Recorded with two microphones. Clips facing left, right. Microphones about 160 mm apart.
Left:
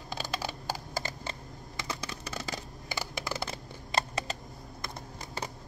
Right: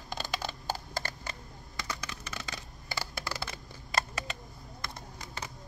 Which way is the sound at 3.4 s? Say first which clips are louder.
Left 4 dB; 30° left (ahead or behind).